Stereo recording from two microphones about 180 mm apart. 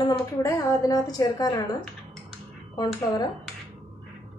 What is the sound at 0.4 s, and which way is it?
Speech, 20° left (ahead or behind).